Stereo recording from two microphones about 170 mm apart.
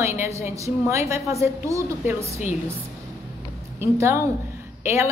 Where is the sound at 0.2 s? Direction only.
15° right (ahead or behind).